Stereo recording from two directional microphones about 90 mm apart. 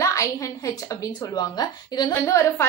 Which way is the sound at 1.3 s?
50° left (ahead or behind).